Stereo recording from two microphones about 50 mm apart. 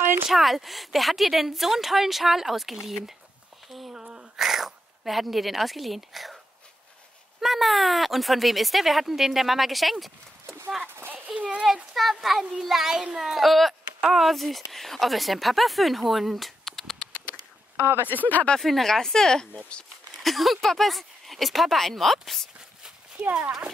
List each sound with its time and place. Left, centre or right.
0.3 s a child's voice: centre
3.9 s a sound: centre
4.4 s a child's voice: centre
11.3 s a sound: right
11.6 s a child's voice: centre
18.1 s speech: left
18.6 s speech: centre
20.2 s a child's voice: centre
23.1 s speech: right